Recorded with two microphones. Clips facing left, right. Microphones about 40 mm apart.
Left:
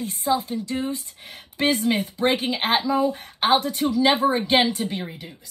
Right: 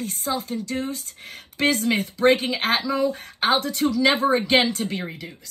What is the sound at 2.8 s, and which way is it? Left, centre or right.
Speech, right.